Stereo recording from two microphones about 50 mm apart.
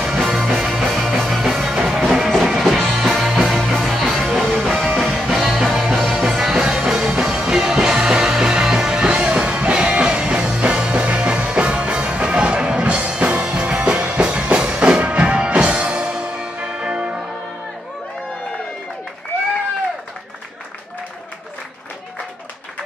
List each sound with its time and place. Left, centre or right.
0.0 s music: centre